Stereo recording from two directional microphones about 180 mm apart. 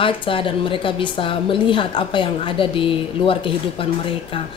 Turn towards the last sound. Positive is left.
turn(degrees=30)  # may be behind; listen again after turning